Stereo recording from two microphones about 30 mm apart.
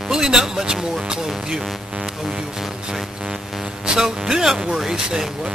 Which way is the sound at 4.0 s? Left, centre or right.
Right.